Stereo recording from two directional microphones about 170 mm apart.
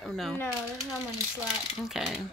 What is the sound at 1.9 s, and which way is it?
Speech, 5° right (ahead or behind).